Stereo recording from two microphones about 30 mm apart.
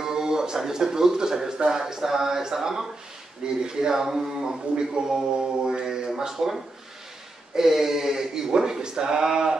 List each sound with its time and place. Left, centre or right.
0.0 s speech: centre
4.7 s speech: right
7.5 s speech: centre